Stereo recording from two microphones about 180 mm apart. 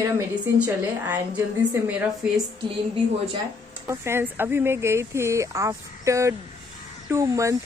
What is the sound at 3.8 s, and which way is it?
Speech, 15° right (ahead or behind).